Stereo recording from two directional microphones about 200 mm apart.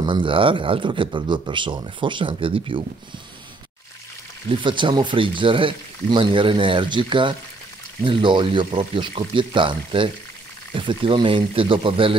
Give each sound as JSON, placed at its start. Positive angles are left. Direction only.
{"t": 0.0, "sound": "speech", "side_deg": -25}
{"t": 4.5, "sound": "speech", "side_deg": -25}